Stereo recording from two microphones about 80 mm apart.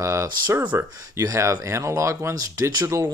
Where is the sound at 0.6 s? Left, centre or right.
Right.